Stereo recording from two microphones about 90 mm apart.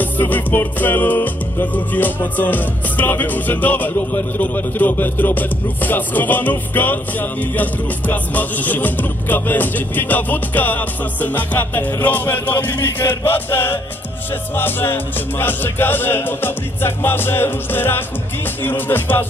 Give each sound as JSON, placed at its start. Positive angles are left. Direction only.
{"t": 0.0, "sound": "music", "side_deg": 20}